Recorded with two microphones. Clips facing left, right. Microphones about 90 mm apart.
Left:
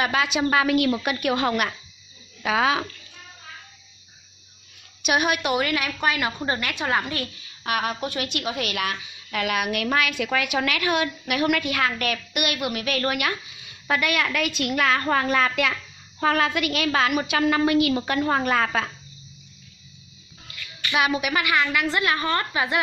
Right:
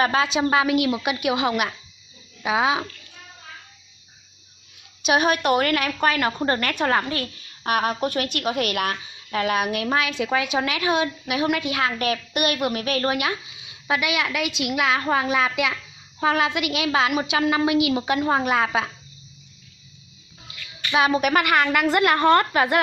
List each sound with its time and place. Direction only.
0.0 s a woman's voice: 30° right (ahead or behind); by 2.8 s 15° right (ahead or behind)
5.0 s a woman's voice: 30° right (ahead or behind); by 7.0 s 45° right (ahead or behind)
7.0 s a woman's voice: 25° right (ahead or behind)
7.6 s a woman's voice: 40° right (ahead or behind)
9.0 s a woman's voice: 35° right (ahead or behind); by 18.9 s 15° right (ahead or behind)
20.4 s bathtub: 25° right (ahead or behind)
21.2 s a woman's voice: 50° right (ahead or behind)